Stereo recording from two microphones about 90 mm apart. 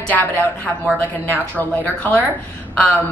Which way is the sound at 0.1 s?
20° left (ahead or behind).